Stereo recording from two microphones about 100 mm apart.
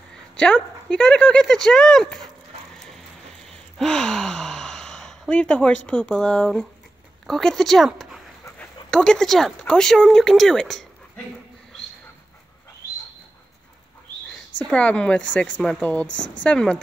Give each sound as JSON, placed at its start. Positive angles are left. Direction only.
{"t": 0.1, "sound": "speech", "side_deg": 10}
{"t": 3.7, "sound": "speech", "side_deg": 5}
{"t": 14.6, "sound": "speech", "side_deg": 10}